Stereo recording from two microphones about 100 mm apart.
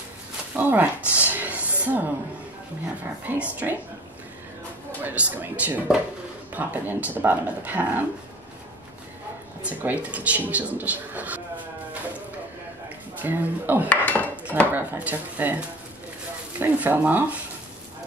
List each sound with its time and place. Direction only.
0.6 s speech: 20° right (ahead or behind)
1.3 s a sound: 20° right (ahead or behind)
3.3 s speech: 15° right (ahead or behind)
5.0 s speech: 15° right (ahead or behind)
9.6 s speech: 15° right (ahead or behind)
13.2 s speech: 20° right (ahead or behind)
13.8 s dishes: 15° left (ahead or behind)
14.7 s speech: 15° right (ahead or behind)